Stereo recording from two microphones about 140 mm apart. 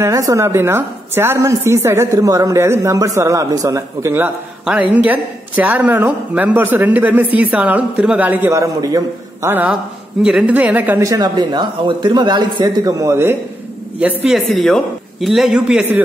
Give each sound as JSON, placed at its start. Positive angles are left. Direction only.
{"t": 0.0, "sound": "a woman's voice", "side_deg": -20}
{"t": 13.0, "sound": "a man's voice", "side_deg": -20}
{"t": 13.9, "sound": "a man's voice", "side_deg": -5}